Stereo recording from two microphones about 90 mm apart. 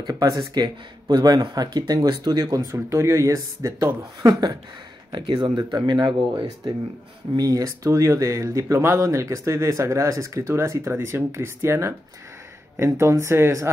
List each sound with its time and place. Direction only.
0.0 s speech: 40° right (ahead or behind)
0.6 s speech: 50° right (ahead or behind)
2.7 s speech: 30° right (ahead or behind)
4.2 s speech: 50° right (ahead or behind); by 13.7 s 35° right (ahead or behind)